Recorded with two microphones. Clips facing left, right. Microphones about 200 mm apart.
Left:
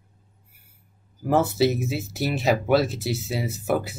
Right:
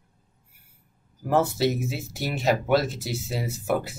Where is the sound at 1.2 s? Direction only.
Centre (ahead or behind).